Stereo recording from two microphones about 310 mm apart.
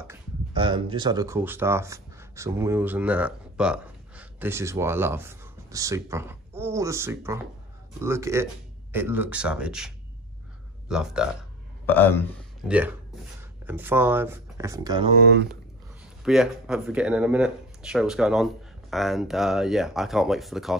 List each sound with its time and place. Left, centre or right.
0.0 s speech: centre
12.6 s speech: centre
16.3 s speech: centre